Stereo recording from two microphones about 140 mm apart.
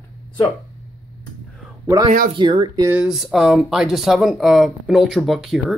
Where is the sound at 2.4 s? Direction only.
35° right (ahead or behind).